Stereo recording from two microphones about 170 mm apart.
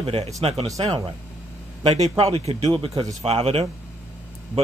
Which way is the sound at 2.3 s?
35° right (ahead or behind).